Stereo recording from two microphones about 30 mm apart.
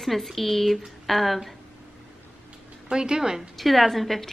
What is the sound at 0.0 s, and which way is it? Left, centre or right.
A woman's voice, centre.